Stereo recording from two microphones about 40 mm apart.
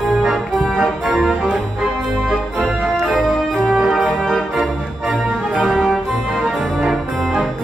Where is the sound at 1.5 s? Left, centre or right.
Centre.